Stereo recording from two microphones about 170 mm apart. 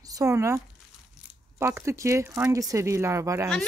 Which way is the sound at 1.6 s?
15° right (ahead or behind).